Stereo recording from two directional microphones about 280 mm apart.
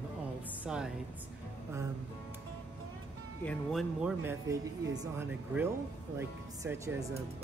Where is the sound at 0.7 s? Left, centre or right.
Centre.